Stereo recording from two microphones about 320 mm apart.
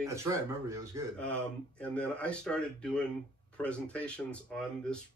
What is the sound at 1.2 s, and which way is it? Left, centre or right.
Speech, centre.